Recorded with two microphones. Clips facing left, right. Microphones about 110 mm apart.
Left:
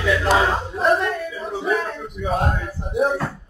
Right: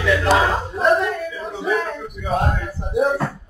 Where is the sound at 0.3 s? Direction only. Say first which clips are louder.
Right 1 dB; centre (ahead or behind).